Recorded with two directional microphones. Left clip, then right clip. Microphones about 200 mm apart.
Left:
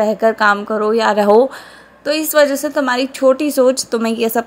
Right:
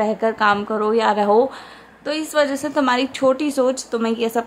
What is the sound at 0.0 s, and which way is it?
A woman's voice, 10° left (ahead or behind).